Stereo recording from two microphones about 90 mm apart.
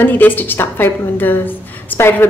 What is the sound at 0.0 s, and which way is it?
A woman's voice, 20° left (ahead or behind).